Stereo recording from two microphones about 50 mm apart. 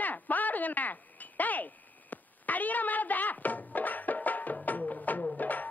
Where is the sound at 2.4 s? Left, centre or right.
Left.